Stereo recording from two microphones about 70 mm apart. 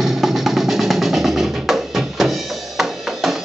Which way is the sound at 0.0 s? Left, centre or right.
Centre.